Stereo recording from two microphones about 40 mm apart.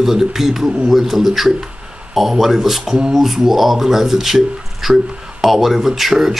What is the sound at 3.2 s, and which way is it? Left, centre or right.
Speech, centre.